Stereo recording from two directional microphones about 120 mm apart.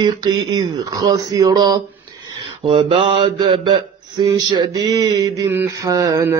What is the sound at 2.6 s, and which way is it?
Mantra, 45° right (ahead or behind).